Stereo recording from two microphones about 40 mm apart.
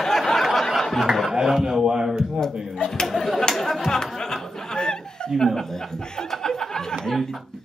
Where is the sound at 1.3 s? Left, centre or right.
Centre.